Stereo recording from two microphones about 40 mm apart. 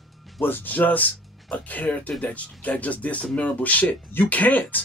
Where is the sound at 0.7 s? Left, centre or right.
Left.